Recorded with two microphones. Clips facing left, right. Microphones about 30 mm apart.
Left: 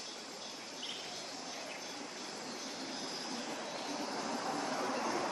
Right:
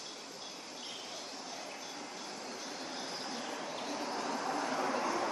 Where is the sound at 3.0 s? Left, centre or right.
Centre.